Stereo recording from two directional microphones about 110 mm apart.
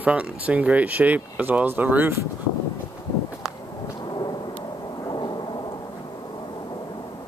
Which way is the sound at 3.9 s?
40° left (ahead or behind).